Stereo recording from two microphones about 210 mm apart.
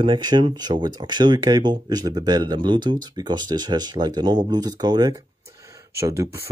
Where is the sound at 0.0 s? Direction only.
20° right (ahead or behind).